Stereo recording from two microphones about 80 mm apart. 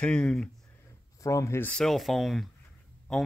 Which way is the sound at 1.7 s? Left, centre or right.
Centre.